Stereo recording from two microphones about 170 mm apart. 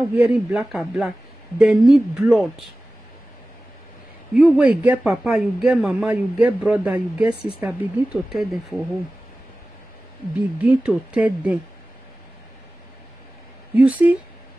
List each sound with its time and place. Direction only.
0.1 s speech: 5° right (ahead or behind)
4.3 s speech: 5° right (ahead or behind)
10.6 s speech: 5° right (ahead or behind)
13.7 s speech: 10° right (ahead or behind)